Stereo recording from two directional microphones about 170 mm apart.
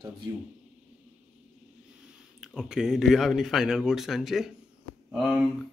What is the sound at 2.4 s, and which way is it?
Speech, 5° right (ahead or behind).